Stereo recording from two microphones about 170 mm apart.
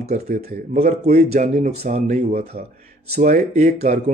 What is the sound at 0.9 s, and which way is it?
Speech, 60° right (ahead or behind).